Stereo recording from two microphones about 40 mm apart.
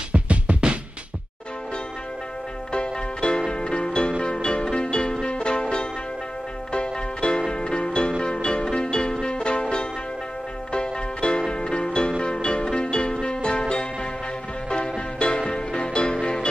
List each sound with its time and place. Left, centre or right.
0.1 s music: right
2.7 s music: left
14.7 s music: left